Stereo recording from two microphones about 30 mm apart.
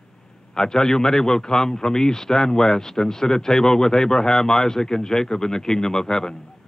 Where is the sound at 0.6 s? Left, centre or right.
Centre.